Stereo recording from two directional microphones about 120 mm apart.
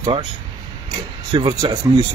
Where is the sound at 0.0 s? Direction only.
40° right (ahead or behind).